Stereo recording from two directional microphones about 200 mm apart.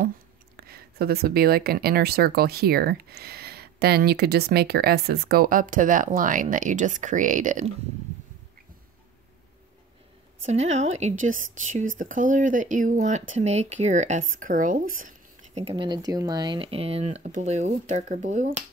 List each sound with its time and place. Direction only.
0.6 s speech: 50° right (ahead or behind)
10.4 s speech: 35° right (ahead or behind)